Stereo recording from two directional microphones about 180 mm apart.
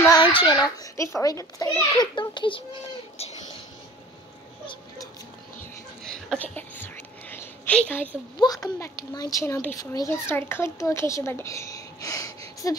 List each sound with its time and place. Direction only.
0.1 s a child's voice: 25° left (ahead or behind)
6.0 s whispering: 5° left (ahead or behind)
8.4 s a child's voice: 20° left (ahead or behind)